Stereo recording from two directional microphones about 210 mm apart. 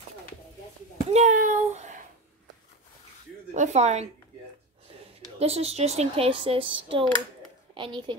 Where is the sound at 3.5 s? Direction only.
35° right (ahead or behind).